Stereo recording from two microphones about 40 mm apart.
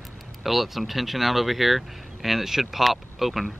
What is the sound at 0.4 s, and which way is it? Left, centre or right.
Speech, centre.